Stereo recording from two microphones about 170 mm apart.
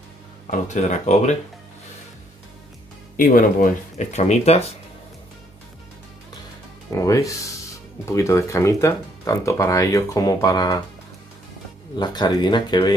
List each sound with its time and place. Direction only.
0.5 s speech: 45° left (ahead or behind)
3.3 s speech: 55° left (ahead or behind); by 4.7 s 40° left (ahead or behind)
7.0 s speech: 20° left (ahead or behind)
12.0 s speech: 25° left (ahead or behind)